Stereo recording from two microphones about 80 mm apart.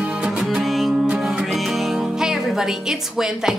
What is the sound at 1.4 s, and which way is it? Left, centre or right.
A woman's voice, centre.